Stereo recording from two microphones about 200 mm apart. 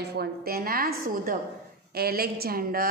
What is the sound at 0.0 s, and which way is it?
A woman's voice, 55° right (ahead or behind).